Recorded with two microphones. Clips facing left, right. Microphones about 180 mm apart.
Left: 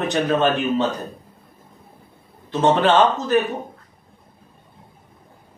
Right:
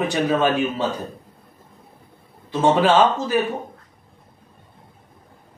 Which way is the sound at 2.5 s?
10° right (ahead or behind).